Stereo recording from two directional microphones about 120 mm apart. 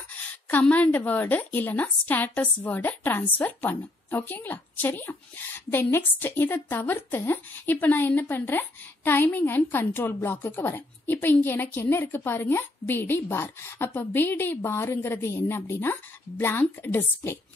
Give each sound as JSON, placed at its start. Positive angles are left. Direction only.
{"t": 0.5, "sound": "a woman's voice", "side_deg": 15}